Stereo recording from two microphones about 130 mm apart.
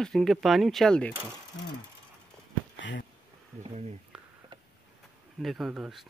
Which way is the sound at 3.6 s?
55° right (ahead or behind).